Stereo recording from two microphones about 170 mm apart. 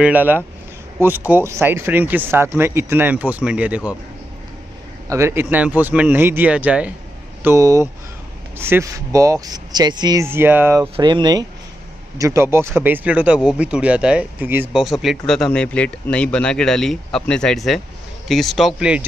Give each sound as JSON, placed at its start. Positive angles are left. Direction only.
{"t": 0.0, "sound": "speech", "side_deg": -10}
{"t": 5.1, "sound": "speech", "side_deg": -15}
{"t": 7.4, "sound": "speech", "side_deg": -20}